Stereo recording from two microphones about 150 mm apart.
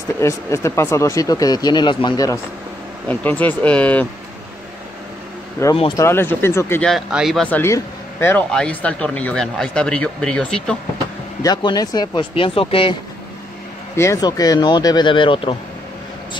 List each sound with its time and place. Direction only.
0.2 s speech: 20° left (ahead or behind)
3.1 s speech: 10° left (ahead or behind)
5.6 s speech: 15° left (ahead or behind)
6.9 s speech: 5° right (ahead or behind)
7.4 s speech: 15° left (ahead or behind)
11.4 s speech: 25° left (ahead or behind)
13.9 s speech: 20° left (ahead or behind)